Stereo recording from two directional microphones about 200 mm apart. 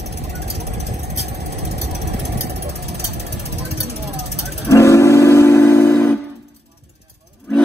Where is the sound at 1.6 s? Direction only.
55° right (ahead or behind).